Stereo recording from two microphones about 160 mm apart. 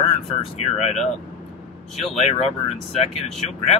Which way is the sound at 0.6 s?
40° left (ahead or behind).